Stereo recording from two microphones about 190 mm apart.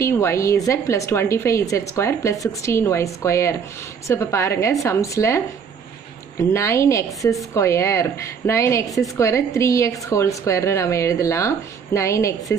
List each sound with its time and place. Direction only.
0.0 s a woman's voice: 15° left (ahead or behind)